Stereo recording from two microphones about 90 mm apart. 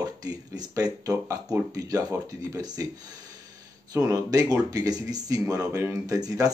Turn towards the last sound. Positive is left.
turn(degrees=-40)  # may be behind; listen again after turning